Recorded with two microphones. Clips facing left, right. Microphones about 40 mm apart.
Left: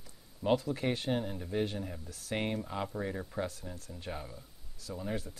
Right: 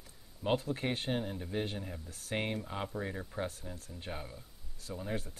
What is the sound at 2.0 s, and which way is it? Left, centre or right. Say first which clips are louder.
Speech: left 2 dB; right.